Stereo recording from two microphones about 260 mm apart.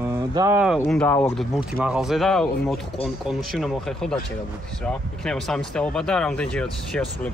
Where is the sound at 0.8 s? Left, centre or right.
Centre.